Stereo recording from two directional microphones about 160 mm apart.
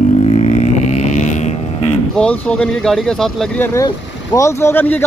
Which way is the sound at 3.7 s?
20° left (ahead or behind).